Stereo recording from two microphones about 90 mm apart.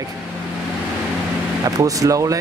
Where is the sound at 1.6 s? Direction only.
40° right (ahead or behind).